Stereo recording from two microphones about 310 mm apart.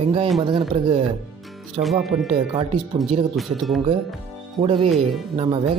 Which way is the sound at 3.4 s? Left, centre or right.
Centre.